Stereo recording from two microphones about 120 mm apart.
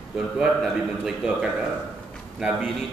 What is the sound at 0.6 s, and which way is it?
Speech, 5° right (ahead or behind).